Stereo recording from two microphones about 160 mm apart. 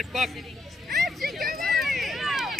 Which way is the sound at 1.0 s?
Centre (ahead or behind).